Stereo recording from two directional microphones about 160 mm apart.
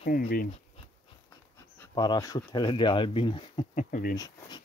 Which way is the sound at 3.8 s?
60° left (ahead or behind).